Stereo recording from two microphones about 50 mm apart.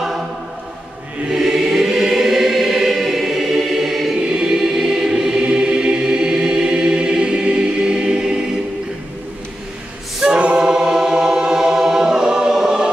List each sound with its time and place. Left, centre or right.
1.3 s choir: centre
10.6 s choir: centre